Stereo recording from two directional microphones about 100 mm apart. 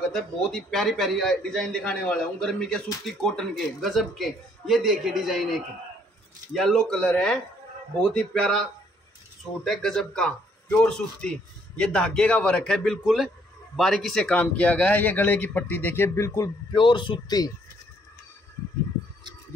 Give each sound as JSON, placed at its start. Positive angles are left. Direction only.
{"t": 0.1, "sound": "a man's voice", "side_deg": 5}
{"t": 9.7, "sound": "a man's voice", "side_deg": 5}
{"t": 16.7, "sound": "speech", "side_deg": 50}